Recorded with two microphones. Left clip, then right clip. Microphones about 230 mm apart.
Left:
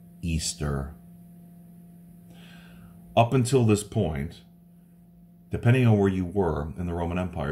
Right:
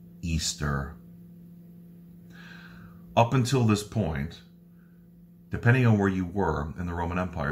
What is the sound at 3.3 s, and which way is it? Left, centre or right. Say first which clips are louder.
Speech: left 3 dB; centre.